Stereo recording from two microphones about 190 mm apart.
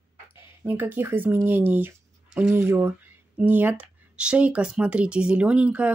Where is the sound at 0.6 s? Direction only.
10° right (ahead or behind).